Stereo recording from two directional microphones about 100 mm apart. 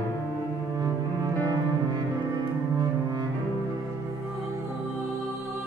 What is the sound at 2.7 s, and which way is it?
Music, 40° right (ahead or behind).